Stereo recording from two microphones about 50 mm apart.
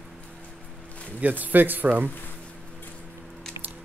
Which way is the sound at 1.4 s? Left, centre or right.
Right.